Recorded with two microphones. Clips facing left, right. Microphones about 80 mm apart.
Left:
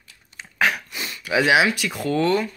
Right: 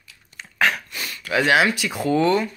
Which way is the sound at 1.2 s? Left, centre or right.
Centre.